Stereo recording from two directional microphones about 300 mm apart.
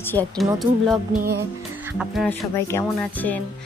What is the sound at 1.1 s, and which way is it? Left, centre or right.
Music, right.